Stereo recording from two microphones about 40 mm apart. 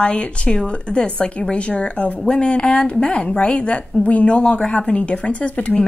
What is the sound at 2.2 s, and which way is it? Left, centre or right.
A woman's voice, left.